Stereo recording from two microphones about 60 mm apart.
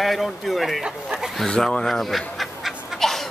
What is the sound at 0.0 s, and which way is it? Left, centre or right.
Speech, centre.